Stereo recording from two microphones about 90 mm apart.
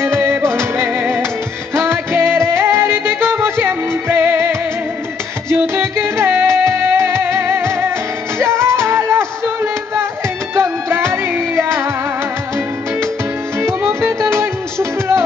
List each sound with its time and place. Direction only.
0.0 s music: 30° right (ahead or behind)
13.6 s music: 30° right (ahead or behind)